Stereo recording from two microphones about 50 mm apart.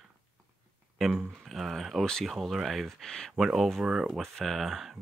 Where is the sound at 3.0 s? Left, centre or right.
Centre.